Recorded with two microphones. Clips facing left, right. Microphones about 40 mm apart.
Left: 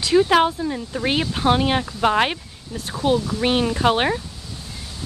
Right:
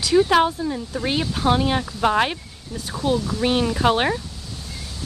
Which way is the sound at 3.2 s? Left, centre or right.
Centre.